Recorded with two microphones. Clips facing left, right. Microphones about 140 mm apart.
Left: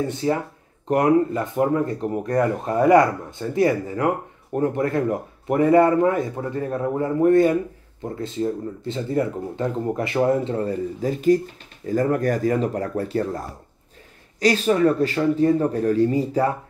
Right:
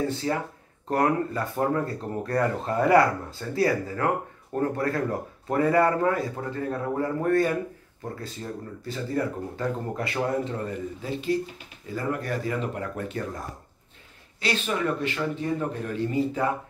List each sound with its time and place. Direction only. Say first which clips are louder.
0.2 s speech: left 5 dB; 25° left (ahead or behind)
14.4 s speech: left 9 dB; 40° left (ahead or behind)